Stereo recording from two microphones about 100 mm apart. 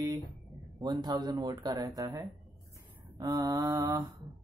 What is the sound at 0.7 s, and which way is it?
Speech, 45° right (ahead or behind).